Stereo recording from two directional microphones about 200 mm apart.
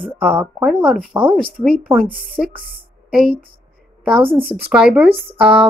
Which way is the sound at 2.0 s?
45° right (ahead or behind).